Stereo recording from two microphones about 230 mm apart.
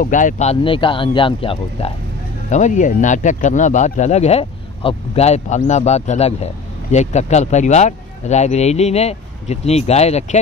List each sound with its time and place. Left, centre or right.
0.0 s speech: left